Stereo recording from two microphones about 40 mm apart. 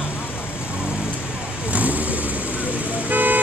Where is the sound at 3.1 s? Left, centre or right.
Right.